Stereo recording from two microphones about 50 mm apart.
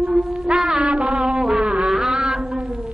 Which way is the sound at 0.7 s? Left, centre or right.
Centre.